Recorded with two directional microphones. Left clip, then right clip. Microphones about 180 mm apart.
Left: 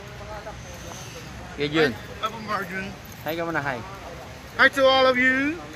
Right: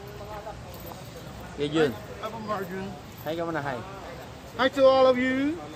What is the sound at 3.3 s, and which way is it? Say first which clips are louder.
Speech: left 3 dB; 15° left (ahead or behind).